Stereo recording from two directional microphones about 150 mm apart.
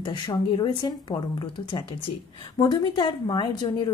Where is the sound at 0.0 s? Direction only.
30° left (ahead or behind).